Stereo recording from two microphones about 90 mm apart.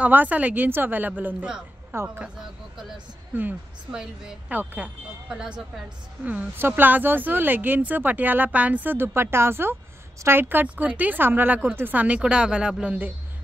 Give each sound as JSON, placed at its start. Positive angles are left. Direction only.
{"t": 0.0, "sound": "speech", "side_deg": -20}
{"t": 1.9, "sound": "speech", "side_deg": -30}
{"t": 3.9, "sound": "speech", "side_deg": -5}
{"t": 4.6, "sound": "speech", "side_deg": -20}